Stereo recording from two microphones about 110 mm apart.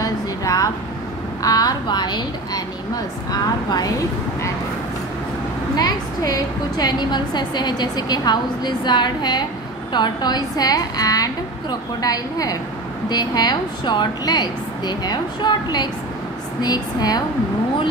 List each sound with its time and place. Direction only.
0.0 s a sound: 30° left (ahead or behind)
1.4 s a woman's voice: 35° left (ahead or behind)
5.8 s a woman's voice: 35° left (ahead or behind)